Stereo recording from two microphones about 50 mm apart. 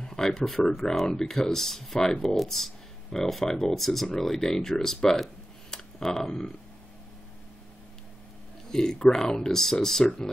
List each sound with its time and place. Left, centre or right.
0.0 s a sound: centre
0.5 s speech: centre
8.7 s speech: centre